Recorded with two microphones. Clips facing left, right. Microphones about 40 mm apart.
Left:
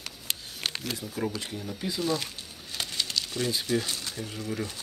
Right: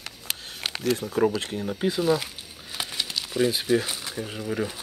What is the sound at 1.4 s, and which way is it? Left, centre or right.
Speech, right.